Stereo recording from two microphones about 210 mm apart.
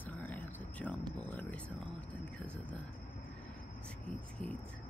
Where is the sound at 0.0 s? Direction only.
10° left (ahead or behind).